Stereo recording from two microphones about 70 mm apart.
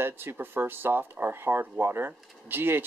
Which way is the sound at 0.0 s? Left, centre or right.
Right.